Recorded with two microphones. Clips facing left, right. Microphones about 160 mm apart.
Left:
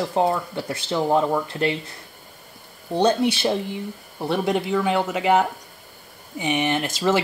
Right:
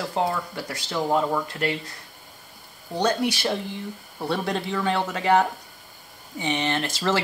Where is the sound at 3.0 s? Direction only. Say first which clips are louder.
Left 4 dB; 25° left (ahead or behind).